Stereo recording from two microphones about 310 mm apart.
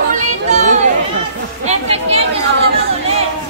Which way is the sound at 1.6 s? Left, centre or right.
Right.